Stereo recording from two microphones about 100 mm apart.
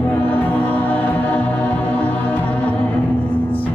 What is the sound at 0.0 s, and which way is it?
Music, 20° left (ahead or behind).